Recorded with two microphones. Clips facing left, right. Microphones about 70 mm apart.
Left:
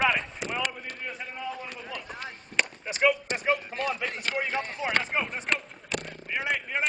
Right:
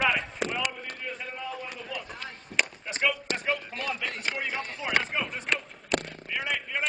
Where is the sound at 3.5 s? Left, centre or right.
Left.